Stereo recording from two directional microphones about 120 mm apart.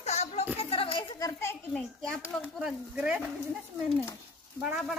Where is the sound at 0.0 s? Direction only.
65° left (ahead or behind).